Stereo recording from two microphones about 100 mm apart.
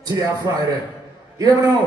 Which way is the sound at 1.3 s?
35° right (ahead or behind).